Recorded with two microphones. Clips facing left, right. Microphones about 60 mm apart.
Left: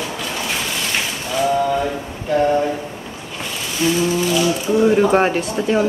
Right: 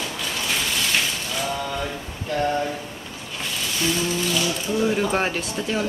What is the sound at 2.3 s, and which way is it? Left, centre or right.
Speech, centre.